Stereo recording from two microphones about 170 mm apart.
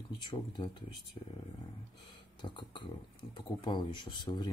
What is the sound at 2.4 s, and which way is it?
Speech, 25° left (ahead or behind).